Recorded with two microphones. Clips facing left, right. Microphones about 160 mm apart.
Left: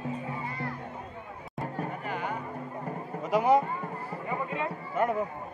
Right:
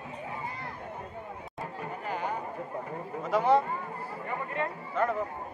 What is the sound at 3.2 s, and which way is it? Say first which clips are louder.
Speech: left 1 dB; 10° left (ahead or behind).